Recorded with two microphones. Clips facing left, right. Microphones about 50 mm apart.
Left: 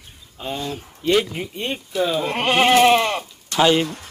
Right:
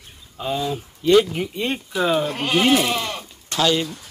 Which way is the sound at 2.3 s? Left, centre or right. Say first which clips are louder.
Left 2 dB; left.